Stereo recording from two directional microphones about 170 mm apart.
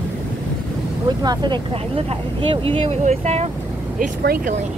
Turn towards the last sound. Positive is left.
turn(degrees=-60)  # may be behind; listen again after turning